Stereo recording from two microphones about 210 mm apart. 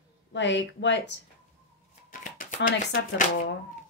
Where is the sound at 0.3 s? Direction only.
60° left (ahead or behind).